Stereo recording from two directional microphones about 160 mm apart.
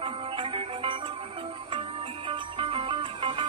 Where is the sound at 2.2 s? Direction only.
35° right (ahead or behind).